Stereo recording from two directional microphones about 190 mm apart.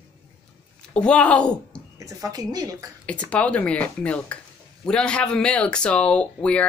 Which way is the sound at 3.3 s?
5° left (ahead or behind).